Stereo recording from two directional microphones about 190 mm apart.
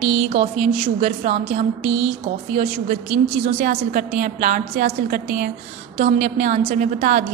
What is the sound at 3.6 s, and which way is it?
A woman's voice, 40° right (ahead or behind).